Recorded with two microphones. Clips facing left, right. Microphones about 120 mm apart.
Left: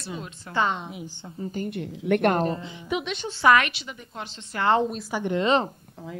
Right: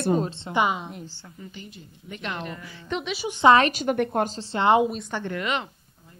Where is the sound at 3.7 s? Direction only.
45° right (ahead or behind).